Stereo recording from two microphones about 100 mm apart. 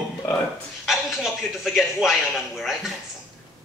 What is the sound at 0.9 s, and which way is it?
A man's voice, centre (ahead or behind).